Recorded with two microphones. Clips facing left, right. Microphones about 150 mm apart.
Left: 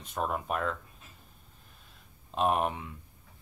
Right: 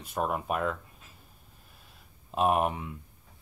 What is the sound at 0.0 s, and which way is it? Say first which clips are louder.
Speech: right 2 dB; 10° right (ahead or behind).